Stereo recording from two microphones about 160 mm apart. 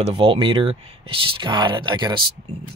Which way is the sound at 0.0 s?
35° right (ahead or behind).